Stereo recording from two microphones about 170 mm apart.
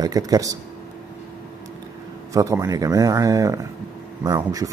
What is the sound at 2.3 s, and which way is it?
Speech, 20° right (ahead or behind).